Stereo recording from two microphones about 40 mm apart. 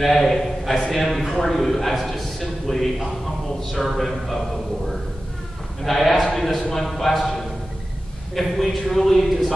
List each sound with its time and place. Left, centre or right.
0.0 s a man's voice: centre
5.9 s a man's voice: centre
6.1 s a man's voice: centre
6.7 s a man's voice: centre